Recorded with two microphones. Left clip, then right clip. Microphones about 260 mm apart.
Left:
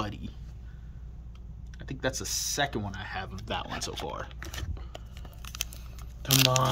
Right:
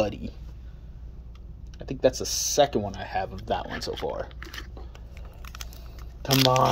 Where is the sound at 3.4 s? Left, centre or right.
Left.